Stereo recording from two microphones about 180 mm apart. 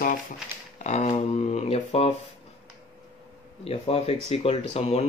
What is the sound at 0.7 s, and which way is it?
Speech, 40° left (ahead or behind).